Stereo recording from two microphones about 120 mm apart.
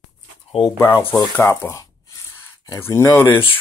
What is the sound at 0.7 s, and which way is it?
Speech, 20° left (ahead or behind).